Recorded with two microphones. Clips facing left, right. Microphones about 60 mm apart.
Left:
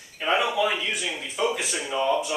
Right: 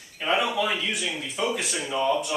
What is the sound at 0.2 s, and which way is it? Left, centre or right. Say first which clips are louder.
Speech: left 1 dB; centre.